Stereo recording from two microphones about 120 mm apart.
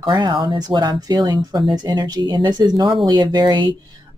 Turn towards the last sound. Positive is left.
turn(degrees=-40)  # may be behind; listen again after turning